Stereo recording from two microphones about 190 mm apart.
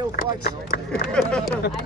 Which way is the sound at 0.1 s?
50° left (ahead or behind).